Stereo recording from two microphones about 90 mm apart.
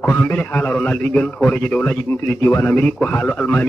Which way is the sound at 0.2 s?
20° left (ahead or behind).